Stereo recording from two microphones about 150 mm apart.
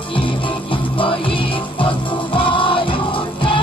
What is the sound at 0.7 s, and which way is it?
Music, 35° left (ahead or behind).